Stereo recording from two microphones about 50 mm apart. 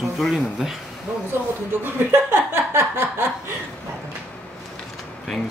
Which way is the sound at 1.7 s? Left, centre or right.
Right.